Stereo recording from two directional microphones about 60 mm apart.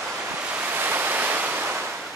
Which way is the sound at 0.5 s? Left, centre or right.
Right.